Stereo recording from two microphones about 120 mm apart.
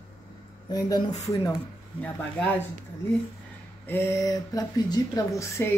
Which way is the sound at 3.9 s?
20° left (ahead or behind).